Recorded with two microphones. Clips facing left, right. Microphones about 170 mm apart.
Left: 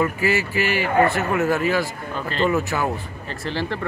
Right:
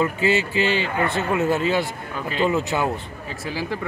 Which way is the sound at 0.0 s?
20° right (ahead or behind).